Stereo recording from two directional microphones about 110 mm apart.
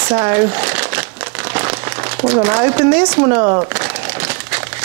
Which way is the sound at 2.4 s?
20° right (ahead or behind).